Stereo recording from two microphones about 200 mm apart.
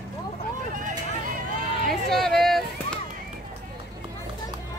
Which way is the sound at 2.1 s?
Centre (ahead or behind).